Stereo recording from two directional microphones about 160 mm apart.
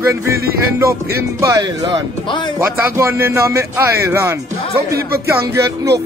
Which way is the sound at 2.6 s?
15° right (ahead or behind).